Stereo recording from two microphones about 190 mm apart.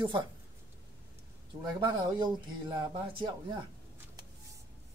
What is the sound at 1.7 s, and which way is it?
Speech, 20° right (ahead or behind).